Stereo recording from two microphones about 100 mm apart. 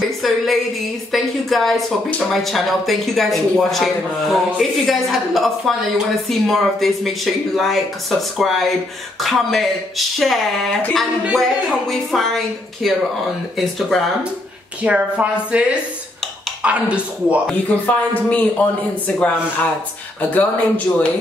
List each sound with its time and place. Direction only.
0.2 s speech: centre (ahead or behind)
14.8 s speech: 15° right (ahead or behind)
16.6 s speech: 15° right (ahead or behind)
17.5 s a man's voice: 15° left (ahead or behind)